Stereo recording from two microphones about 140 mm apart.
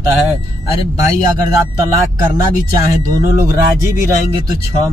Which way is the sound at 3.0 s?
25° right (ahead or behind).